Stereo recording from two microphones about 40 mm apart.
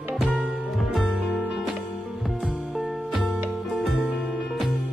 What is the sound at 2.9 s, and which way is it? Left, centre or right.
Music, centre.